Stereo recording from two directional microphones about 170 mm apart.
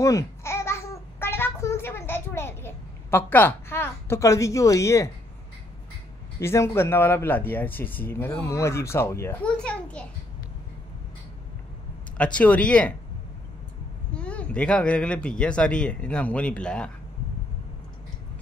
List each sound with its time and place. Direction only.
0.0 s babbling: 20° left (ahead or behind)
6.4 s speech: 15° left (ahead or behind)
12.2 s speech: 5° left (ahead or behind)
14.1 s speech: 5° left (ahead or behind)